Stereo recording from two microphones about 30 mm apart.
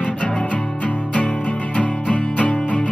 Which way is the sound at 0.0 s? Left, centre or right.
Left.